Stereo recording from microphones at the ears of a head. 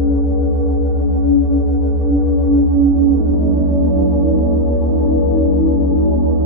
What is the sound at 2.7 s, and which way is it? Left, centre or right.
Music, right.